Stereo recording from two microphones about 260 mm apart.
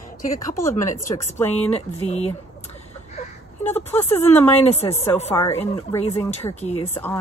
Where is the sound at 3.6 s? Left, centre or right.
Centre.